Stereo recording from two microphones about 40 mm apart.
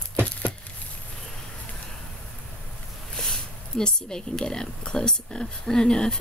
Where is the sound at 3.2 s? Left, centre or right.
Centre.